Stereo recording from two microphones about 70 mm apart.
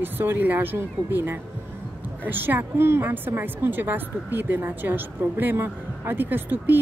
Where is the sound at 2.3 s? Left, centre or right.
Right.